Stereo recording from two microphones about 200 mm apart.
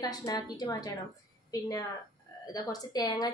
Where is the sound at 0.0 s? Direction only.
20° left (ahead or behind).